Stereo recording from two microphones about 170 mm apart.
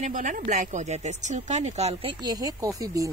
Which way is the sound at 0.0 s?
50° right (ahead or behind).